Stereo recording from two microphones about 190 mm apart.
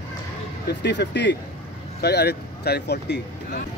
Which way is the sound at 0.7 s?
65° left (ahead or behind).